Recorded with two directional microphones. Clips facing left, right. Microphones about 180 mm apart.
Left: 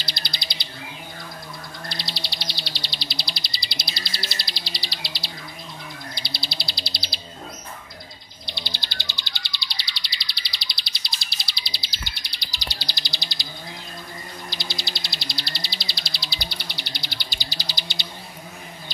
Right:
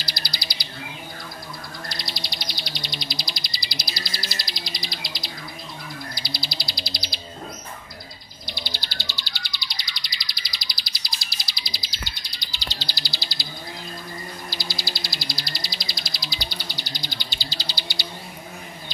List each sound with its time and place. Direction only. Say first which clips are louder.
0.0 s bird: right 1 dB; 25° left (ahead or behind)
2.0 s bird: even; 25° left (ahead or behind)
4.4 s music: right 1 dB; 30° left (ahead or behind)
6.1 s bird: right 1 dB; 25° left (ahead or behind)
8.5 s bird: right 1 dB; 25° left (ahead or behind)
12.1 s bird: even; 70° left (ahead or behind)
12.5 s bird: right 1 dB; 15° left (ahead or behind)
14.5 s bird: right 1 dB; 20° left (ahead or behind)
16.5 s bird: right 1 dB; 65° left (ahead or behind)
17.4 s bird: right 1 dB; 15° left (ahead or behind)